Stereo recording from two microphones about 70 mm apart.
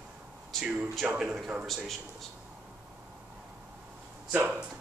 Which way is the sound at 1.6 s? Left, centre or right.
Centre.